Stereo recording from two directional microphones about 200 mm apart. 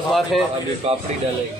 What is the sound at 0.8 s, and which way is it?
Speech, 30° right (ahead or behind).